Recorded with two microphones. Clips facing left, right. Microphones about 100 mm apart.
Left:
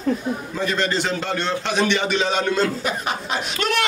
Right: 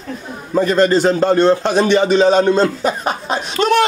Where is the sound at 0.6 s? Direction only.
40° right (ahead or behind).